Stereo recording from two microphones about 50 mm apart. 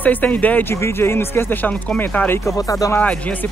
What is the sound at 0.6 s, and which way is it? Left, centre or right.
Speech, left.